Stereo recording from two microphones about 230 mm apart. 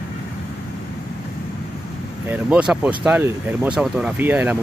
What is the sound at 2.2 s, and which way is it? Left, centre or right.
Speech, centre.